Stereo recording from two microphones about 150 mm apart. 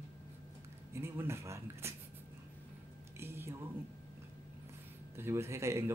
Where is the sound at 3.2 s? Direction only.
15° right (ahead or behind).